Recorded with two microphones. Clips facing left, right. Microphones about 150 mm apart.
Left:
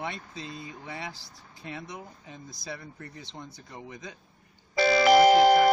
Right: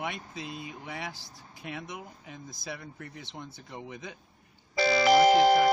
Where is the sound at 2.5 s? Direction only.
Centre (ahead or behind).